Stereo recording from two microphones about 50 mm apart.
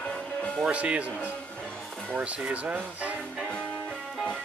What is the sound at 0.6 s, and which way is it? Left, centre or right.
Speech, right.